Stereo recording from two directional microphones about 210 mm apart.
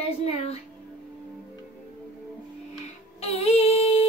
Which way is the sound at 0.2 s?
30° left (ahead or behind).